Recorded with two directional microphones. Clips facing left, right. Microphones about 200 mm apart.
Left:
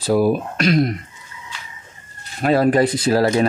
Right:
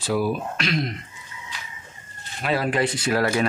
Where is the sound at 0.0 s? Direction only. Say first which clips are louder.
Left 7 dB; 45° left (ahead or behind).